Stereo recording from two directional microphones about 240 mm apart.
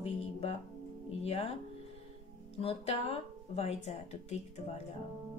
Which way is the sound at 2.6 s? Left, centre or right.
Left.